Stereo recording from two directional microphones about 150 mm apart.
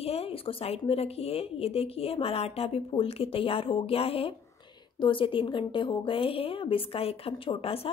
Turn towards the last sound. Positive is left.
turn(degrees=40)  # may be behind; listen again after turning